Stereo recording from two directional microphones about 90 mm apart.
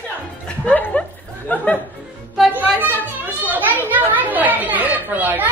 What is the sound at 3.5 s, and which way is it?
Chatter, 20° right (ahead or behind).